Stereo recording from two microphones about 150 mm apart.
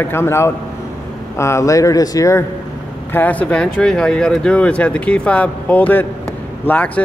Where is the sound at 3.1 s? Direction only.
10° left (ahead or behind).